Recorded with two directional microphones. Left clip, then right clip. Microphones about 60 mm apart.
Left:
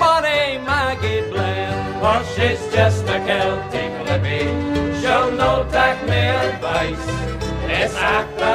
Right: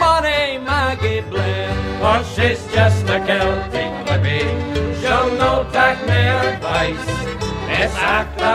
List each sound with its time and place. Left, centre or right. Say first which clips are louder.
0.0 s music: right 1 dB; right
3.3 s music: right 1 dB; centre
5.0 s music: right 1 dB; right
6.4 s music: right 2 dB; centre
7.7 s music: right 1 dB; right